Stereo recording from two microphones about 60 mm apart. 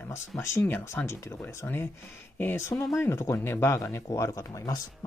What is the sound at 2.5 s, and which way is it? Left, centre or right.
Speech, left.